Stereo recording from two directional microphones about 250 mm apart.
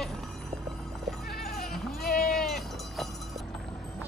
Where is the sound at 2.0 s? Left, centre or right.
Left.